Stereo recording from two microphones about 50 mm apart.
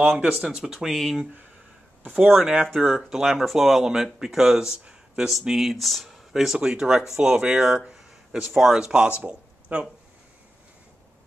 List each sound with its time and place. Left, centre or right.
0.2 s speech: centre
2.0 s speech: centre
9.7 s speech: right